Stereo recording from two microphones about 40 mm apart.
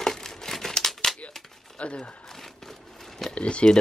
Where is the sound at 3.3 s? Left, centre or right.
Left.